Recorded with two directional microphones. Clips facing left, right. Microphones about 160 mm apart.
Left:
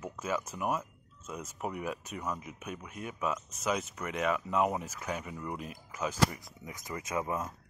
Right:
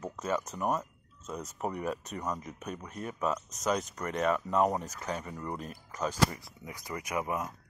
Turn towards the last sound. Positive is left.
turn(degrees=-15)  # may be behind; listen again after turning